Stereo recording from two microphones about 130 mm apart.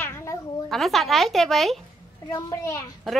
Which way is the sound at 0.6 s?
Centre (ahead or behind).